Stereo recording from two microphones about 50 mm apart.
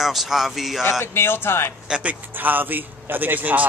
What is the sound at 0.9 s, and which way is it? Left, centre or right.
Speech, left.